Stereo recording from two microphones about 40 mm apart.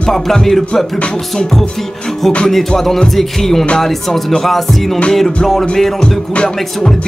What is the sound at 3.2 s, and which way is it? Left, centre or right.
Music, centre.